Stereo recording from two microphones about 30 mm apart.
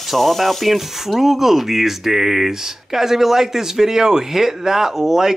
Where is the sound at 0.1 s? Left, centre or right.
Centre.